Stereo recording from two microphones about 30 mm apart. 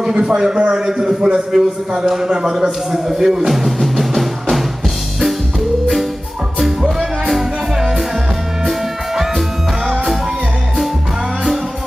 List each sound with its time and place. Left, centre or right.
0.1 s speech: right
3.1 s music: centre
7.2 s music: centre